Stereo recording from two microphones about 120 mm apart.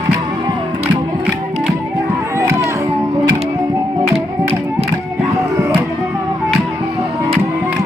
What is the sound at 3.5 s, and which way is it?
Music, 25° right (ahead or behind).